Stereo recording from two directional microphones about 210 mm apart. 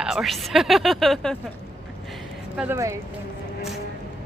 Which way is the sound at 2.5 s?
10° right (ahead or behind).